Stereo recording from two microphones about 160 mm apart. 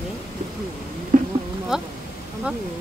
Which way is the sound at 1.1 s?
60° right (ahead or behind).